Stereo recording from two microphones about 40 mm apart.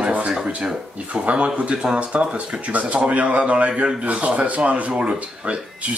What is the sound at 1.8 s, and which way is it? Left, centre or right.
Speech, right.